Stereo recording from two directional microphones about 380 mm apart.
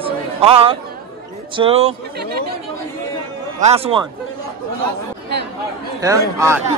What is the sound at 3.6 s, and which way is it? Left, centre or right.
Speech, centre.